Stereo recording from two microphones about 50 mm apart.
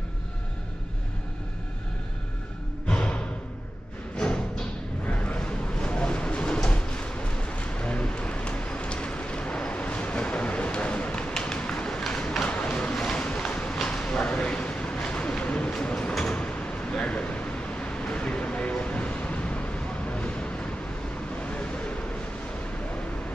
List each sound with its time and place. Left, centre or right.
2.9 s music: left
4.2 s music: centre
5.0 s a sound: left
13.8 s bird: centre
21.4 s vehicle: left